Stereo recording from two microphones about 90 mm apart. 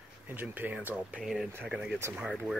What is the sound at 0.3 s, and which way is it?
Speech, 20° right (ahead or behind).